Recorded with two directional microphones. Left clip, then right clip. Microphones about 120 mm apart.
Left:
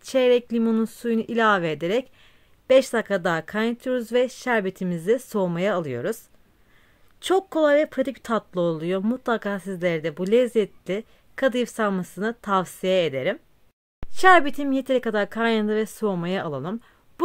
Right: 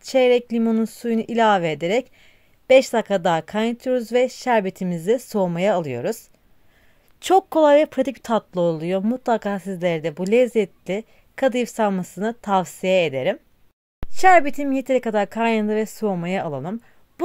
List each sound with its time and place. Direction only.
0.0 s speech: 25° right (ahead or behind)
14.1 s speech: 15° right (ahead or behind)